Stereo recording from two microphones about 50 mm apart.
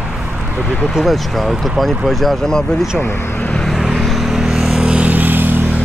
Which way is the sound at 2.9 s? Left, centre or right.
Left.